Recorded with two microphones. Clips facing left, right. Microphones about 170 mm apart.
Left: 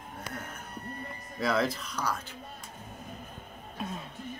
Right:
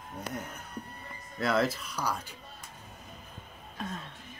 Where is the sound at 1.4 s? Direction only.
5° right (ahead or behind).